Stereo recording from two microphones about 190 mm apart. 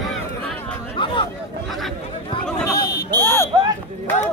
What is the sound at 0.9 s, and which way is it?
Chatter, 25° left (ahead or behind).